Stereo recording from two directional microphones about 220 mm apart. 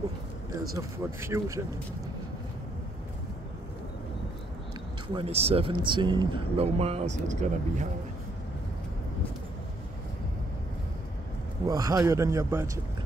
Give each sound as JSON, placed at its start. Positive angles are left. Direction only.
{"t": 1.2, "sound": "a man's voice", "side_deg": -10}
{"t": 5.0, "sound": "speech", "side_deg": -25}
{"t": 11.6, "sound": "a man's voice", "side_deg": -15}